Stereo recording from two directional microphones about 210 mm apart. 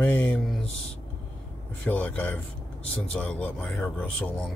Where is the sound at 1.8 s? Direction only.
5° left (ahead or behind).